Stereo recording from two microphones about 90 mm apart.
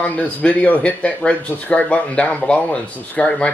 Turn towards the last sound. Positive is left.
turn(degrees=10)  # may be behind; listen again after turning